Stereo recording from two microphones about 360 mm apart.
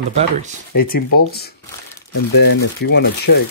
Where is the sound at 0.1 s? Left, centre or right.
Centre.